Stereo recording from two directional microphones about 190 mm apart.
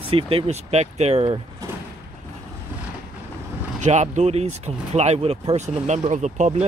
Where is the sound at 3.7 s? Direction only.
40° right (ahead or behind).